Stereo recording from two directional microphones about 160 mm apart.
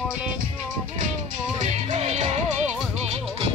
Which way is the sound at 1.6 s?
45° right (ahead or behind).